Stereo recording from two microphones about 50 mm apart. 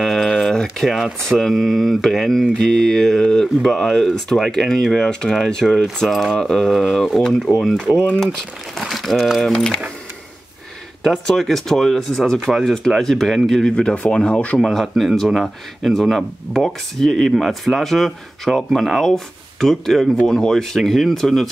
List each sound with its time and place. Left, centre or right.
0.0 s a sound: centre
0.8 s speech: centre
6.0 s speech: centre
8.7 s speech: centre
9.5 s speech: centre
11.2 s speech: centre
13.7 s speech: left
14.6 s speech: centre